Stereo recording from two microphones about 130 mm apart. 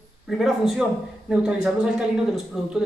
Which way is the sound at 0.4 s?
Centre (ahead or behind).